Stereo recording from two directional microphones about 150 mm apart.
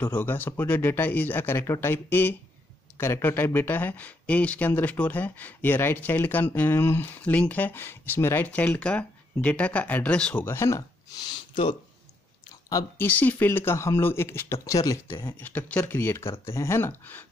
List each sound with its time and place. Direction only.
0.0 s speech: 15° left (ahead or behind)
12.6 s speech: 25° left (ahead or behind)
13.0 s speech: 10° left (ahead or behind)